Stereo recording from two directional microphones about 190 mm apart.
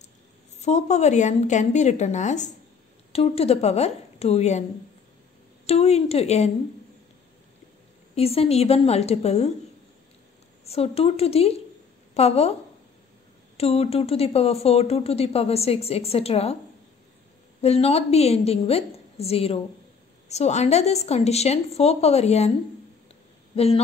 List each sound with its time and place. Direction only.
0.6 s speech: 35° left (ahead or behind)
5.7 s speech: 35° left (ahead or behind)
8.1 s speech: 30° left (ahead or behind)
10.6 s a woman's voice: 35° left (ahead or behind)
13.6 s speech: 30° left (ahead or behind)
17.6 s speech: 35° left (ahead or behind)
23.5 s speech: 30° left (ahead or behind)